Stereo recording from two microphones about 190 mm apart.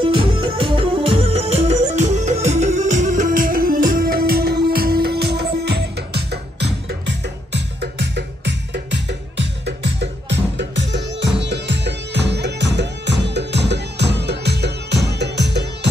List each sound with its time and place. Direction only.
0.0 s music: 25° right (ahead or behind); by 15.9 s 65° right (ahead or behind)